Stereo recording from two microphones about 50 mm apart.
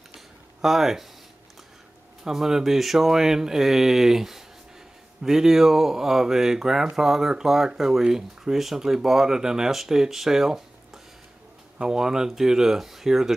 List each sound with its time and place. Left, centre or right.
0.6 s speech: centre
2.2 s speech: centre